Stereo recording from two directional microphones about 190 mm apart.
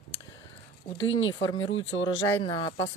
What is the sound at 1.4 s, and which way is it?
Speech, 25° left (ahead or behind).